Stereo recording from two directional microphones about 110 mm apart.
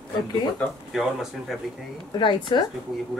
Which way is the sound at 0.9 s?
Centre (ahead or behind).